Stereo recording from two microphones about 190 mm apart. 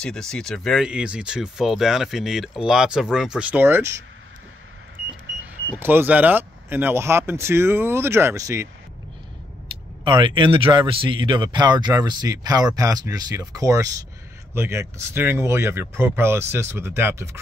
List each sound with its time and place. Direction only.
0.0 s speech: 5° left (ahead or behind); by 4.0 s 15° right (ahead or behind)
5.4 s speech: 10° right (ahead or behind)
10.0 s speech: 25° right (ahead or behind)